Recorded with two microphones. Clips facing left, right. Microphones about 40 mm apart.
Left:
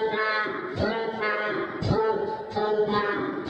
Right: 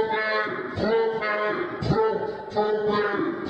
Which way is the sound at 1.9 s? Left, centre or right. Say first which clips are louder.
Right 2 dB; centre.